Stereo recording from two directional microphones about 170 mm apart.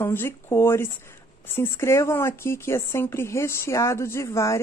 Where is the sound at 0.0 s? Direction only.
15° left (ahead or behind).